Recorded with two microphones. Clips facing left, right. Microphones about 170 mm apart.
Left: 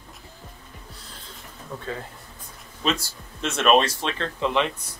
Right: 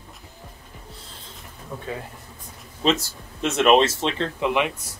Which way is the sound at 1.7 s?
10° right (ahead or behind).